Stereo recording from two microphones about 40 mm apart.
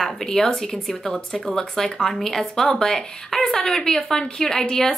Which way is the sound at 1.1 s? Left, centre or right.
Centre.